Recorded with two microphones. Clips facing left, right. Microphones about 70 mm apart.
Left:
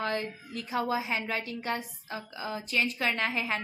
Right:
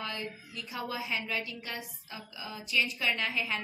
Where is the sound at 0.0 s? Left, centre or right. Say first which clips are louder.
Left 6 dB; left.